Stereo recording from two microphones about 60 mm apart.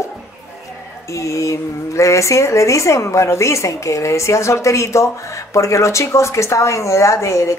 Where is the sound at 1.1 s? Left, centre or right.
Left.